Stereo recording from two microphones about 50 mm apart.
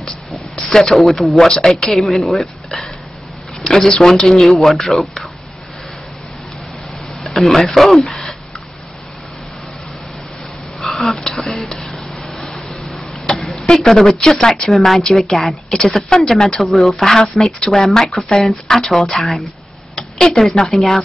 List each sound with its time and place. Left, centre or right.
0.7 s speech: centre
7.3 s speech: centre
11.0 s a sound: centre
13.7 s speech: centre
20.0 s a sound: centre
20.6 s speech: centre